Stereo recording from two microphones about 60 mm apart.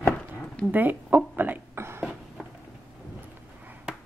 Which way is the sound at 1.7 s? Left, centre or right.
Right.